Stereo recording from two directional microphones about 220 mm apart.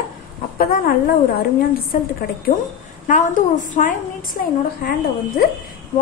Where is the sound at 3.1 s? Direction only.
35° left (ahead or behind).